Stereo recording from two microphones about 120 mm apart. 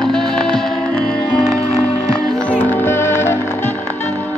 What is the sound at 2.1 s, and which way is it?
Music, 10° left (ahead or behind).